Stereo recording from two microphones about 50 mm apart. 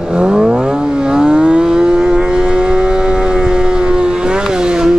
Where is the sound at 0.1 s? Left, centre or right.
Centre.